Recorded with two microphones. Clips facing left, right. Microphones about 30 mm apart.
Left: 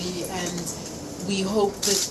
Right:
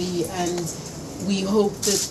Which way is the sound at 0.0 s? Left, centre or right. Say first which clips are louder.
Right 5 dB; centre.